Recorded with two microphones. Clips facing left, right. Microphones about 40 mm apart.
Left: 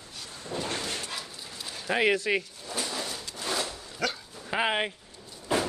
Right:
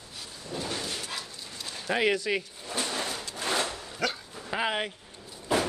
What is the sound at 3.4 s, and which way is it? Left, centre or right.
Dog, right.